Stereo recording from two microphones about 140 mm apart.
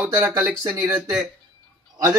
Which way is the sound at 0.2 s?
15° right (ahead or behind).